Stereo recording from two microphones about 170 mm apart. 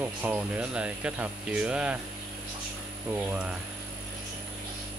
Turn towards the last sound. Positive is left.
turn(degrees=-10)  # may be behind; listen again after turning